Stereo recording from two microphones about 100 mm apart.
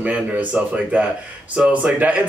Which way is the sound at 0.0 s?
15° right (ahead or behind).